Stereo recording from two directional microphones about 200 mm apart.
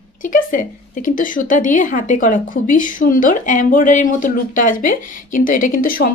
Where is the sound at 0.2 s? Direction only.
40° left (ahead or behind).